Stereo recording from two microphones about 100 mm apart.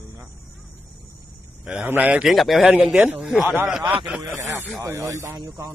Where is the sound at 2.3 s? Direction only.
Centre (ahead or behind).